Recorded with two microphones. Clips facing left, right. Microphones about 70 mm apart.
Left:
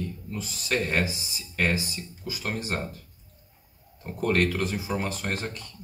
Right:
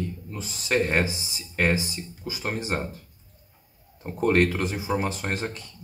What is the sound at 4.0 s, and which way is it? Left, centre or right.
Speech, right.